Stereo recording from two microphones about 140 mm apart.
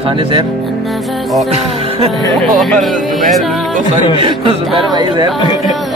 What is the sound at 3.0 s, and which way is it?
Music, centre (ahead or behind).